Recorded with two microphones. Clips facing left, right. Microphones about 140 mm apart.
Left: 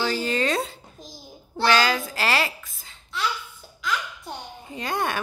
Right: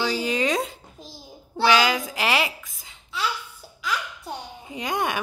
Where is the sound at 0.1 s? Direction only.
15° right (ahead or behind).